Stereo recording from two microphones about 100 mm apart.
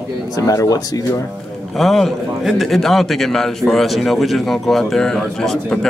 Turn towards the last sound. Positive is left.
turn(degrees=5)  # may be behind; listen again after turning